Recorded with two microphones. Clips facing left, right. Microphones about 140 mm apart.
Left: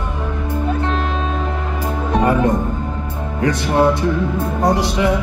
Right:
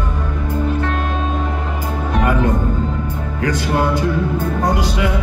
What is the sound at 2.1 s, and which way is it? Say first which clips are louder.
Music: left 2 dB; 30° left (ahead or behind).